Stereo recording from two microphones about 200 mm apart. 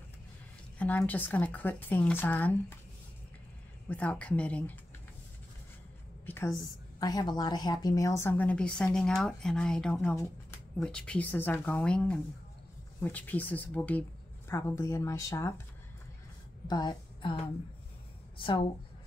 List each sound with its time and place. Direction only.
0.7 s a woman's voice: 10° left (ahead or behind)
3.9 s a woman's voice: 5° left (ahead or behind)
6.2 s a sound: 10° left (ahead or behind)
7.0 s a woman's voice: 20° left (ahead or behind)
16.6 s a woman's voice: 20° left (ahead or behind)